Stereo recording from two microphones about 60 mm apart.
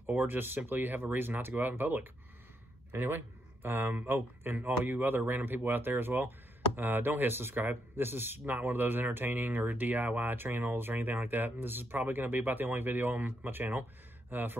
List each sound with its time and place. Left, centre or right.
0.0 s speech: right